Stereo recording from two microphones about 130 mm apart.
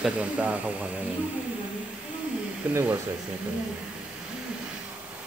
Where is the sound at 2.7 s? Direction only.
20° right (ahead or behind).